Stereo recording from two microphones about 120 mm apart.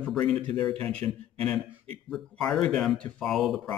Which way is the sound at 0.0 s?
10° left (ahead or behind).